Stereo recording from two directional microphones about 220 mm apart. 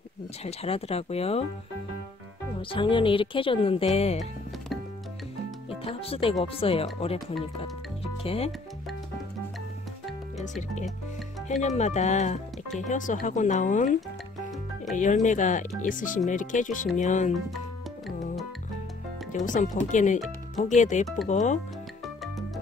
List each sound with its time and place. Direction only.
0.4 s speech: 30° left (ahead or behind)
2.7 s speech: 20° left (ahead or behind)
4.2 s music: centre (ahead or behind)
5.9 s speech: 25° left (ahead or behind)
11.6 s speech: 30° left (ahead or behind)
15.2 s speech: 35° left (ahead or behind)
19.3 s speech: 35° left (ahead or behind)